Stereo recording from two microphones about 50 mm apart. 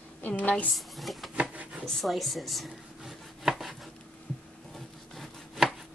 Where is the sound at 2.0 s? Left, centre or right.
Centre.